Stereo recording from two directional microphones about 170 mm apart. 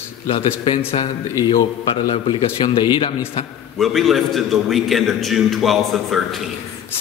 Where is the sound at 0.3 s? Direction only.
30° left (ahead or behind).